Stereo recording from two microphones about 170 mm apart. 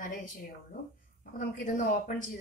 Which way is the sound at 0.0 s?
55° left (ahead or behind).